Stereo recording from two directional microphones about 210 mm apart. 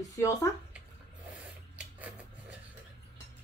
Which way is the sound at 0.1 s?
15° left (ahead or behind).